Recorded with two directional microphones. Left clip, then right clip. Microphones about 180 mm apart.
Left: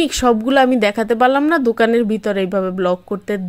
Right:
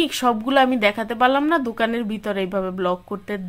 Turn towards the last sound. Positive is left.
turn(degrees=25)  # may be behind; listen again after turning